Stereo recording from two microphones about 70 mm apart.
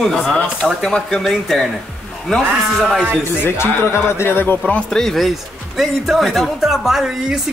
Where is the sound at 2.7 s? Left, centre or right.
Centre.